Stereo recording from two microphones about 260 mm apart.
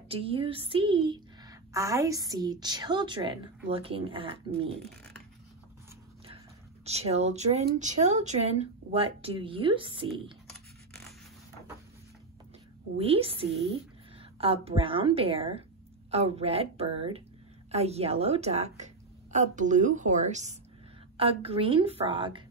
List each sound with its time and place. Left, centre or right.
0.1 s a woman's voice: right
6.2 s speech: right
12.9 s speech: right